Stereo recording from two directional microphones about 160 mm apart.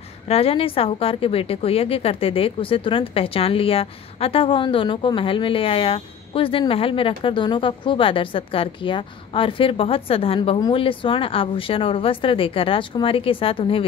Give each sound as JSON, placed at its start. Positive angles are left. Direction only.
{"t": 0.3, "sound": "a woman's voice", "side_deg": 35}